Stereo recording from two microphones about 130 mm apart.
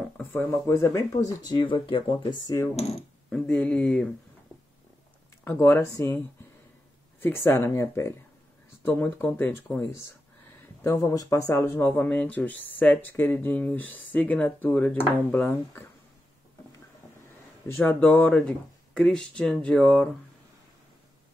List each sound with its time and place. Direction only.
0.2 s speech: 10° left (ahead or behind); by 2.0 s 40° left (ahead or behind)
2.4 s speech: 25° left (ahead or behind)
2.7 s mechanisms: 55° left (ahead or behind)
3.3 s speech: 10° left (ahead or behind)
5.4 s speech: 15° left (ahead or behind)
10.8 s speech: 25° left (ahead or behind)
17.6 s speech: 15° left (ahead or behind)